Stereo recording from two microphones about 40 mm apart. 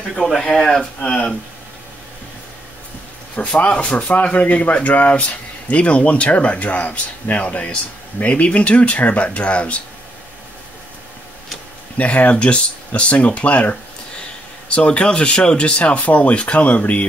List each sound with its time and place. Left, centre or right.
0.1 s speech: centre
3.3 s speech: left
12.0 s speech: left
14.8 s speech: left